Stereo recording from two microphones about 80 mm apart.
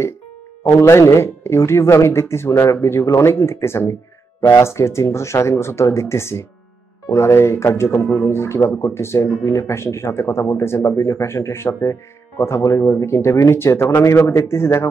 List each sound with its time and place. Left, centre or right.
0.7 s speech: left